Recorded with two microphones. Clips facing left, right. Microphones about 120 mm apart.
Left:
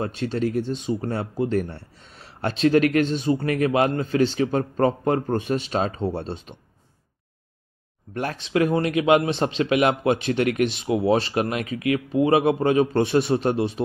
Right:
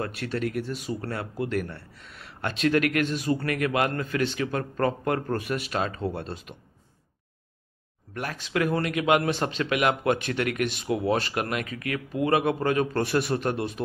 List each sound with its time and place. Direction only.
0.0 s speech: 25° left (ahead or behind)
8.1 s speech: 30° left (ahead or behind)